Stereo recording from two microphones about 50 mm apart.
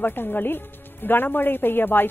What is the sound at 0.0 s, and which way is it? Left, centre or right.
Speech, left.